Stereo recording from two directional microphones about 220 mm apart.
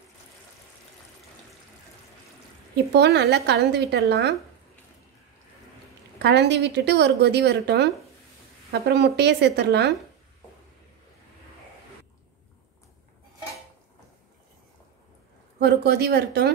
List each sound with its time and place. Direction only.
2.7 s a woman's voice: 50° right (ahead or behind)
6.1 s a woman's voice: 50° right (ahead or behind)
15.6 s a woman's voice: 50° right (ahead or behind)